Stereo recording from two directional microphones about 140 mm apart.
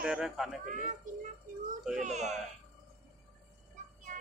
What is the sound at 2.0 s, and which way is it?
Speech, 55° right (ahead or behind).